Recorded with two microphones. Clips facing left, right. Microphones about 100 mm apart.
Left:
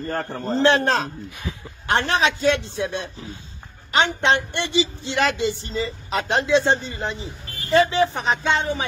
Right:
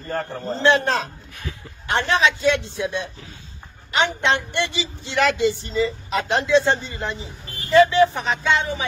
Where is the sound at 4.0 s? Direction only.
30° left (ahead or behind).